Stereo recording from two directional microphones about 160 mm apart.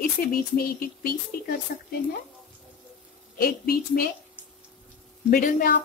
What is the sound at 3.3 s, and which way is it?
Speech, 75° left (ahead or behind).